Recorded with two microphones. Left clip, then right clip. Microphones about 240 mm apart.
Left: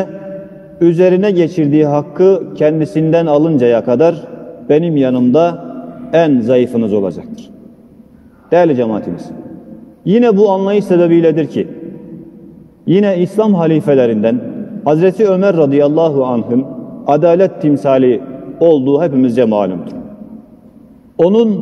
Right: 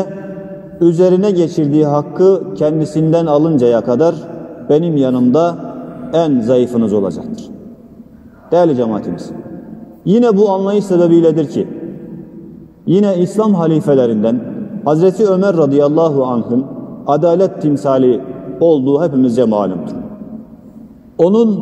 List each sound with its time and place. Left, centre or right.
0.7 s a man's voice: left
8.5 s a man's voice: left
12.8 s a man's voice: left
21.2 s a man's voice: left